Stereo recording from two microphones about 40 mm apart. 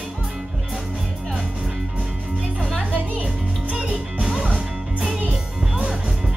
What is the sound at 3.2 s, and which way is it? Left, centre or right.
Music, centre.